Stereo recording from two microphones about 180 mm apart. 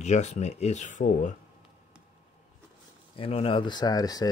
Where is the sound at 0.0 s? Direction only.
40° left (ahead or behind).